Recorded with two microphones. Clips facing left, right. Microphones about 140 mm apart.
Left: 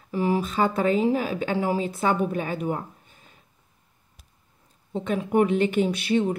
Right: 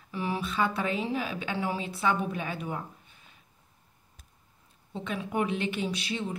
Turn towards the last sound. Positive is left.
turn(degrees=55)  # may be behind; listen again after turning